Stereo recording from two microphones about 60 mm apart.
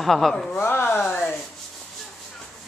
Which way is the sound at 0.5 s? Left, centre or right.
Left.